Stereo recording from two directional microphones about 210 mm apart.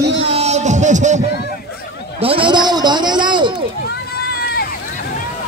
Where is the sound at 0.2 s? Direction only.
30° right (ahead or behind).